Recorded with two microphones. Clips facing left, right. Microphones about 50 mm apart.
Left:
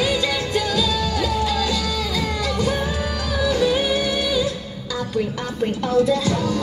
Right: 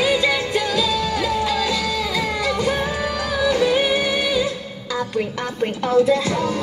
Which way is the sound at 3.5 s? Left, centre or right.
Right.